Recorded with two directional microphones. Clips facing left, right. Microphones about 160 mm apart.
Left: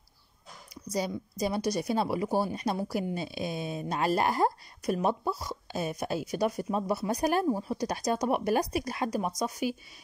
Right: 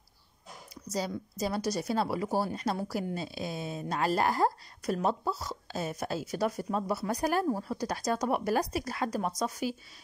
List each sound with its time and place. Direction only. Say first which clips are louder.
0.8 s speech: left 2 dB; 15° left (ahead or behind)